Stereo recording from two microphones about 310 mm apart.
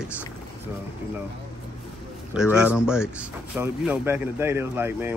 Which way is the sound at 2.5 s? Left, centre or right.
Centre.